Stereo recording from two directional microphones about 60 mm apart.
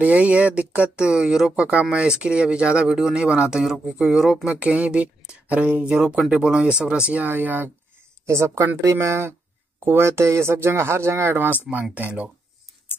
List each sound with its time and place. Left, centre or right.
0.0 s speech: right; by 4.4 s centre
4.5 s speech: right
7.2 s speech: right
8.3 s speech: right
11.7 s speech: right